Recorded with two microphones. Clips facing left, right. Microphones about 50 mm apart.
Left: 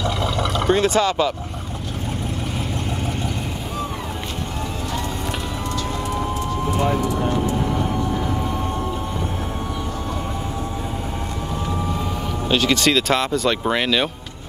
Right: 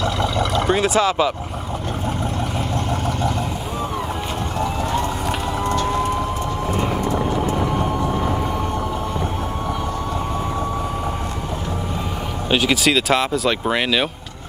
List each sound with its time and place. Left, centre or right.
0.7 s speech: centre
7.4 s vehicle: right
12.4 s speech: centre